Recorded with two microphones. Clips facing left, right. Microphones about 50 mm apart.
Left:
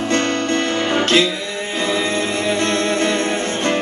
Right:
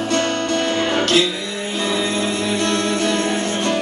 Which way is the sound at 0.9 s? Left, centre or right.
Left.